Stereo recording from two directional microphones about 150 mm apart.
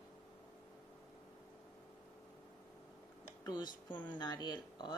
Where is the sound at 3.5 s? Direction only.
30° left (ahead or behind).